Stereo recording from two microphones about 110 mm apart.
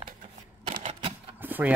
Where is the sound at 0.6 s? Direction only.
70° right (ahead or behind).